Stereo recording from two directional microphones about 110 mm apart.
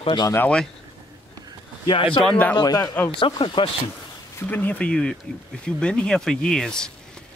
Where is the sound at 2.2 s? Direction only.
10° left (ahead or behind).